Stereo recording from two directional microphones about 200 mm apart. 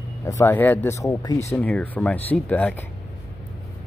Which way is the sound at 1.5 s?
5° left (ahead or behind).